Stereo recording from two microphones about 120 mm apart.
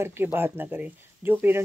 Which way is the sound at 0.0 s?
20° right (ahead or behind).